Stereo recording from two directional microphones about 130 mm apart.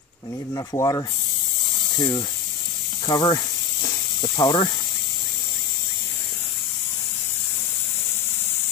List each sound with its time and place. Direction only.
0.5 s speech: 25° left (ahead or behind)